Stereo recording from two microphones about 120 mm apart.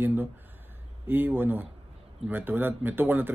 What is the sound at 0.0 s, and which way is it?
Speech, 15° right (ahead or behind).